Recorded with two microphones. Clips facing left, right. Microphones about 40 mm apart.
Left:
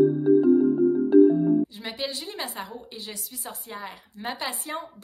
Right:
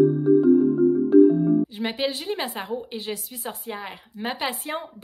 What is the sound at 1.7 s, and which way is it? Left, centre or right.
A woman's voice, right.